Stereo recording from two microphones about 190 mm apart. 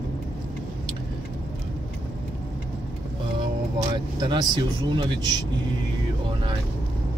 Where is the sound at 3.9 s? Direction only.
25° right (ahead or behind).